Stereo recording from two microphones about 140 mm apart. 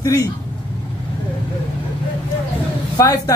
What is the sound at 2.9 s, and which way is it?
Speech, 25° left (ahead or behind).